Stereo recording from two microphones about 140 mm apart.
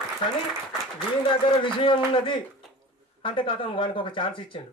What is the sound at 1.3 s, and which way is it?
A man's voice, 35° left (ahead or behind).